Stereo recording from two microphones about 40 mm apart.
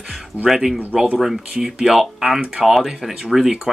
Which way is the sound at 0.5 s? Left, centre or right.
Centre.